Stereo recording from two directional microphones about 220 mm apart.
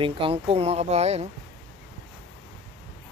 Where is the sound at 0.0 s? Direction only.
25° right (ahead or behind).